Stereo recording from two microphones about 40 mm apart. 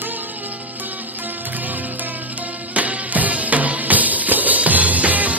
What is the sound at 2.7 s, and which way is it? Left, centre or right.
Music, right.